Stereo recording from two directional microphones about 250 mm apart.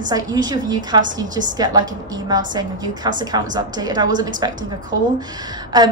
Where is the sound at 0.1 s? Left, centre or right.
Centre.